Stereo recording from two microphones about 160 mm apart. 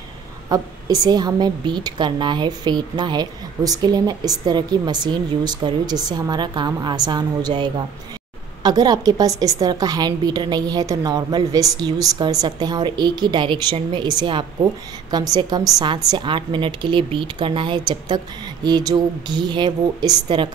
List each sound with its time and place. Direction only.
0.5 s a woman's voice: 20° right (ahead or behind)